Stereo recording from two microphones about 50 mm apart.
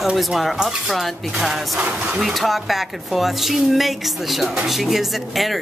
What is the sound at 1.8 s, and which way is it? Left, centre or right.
Speech, right.